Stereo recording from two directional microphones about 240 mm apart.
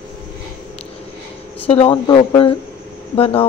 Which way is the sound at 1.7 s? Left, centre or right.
Left.